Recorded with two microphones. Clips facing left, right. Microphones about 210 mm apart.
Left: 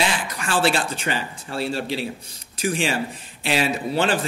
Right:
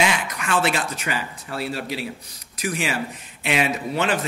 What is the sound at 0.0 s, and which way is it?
Speech, 30° left (ahead or behind).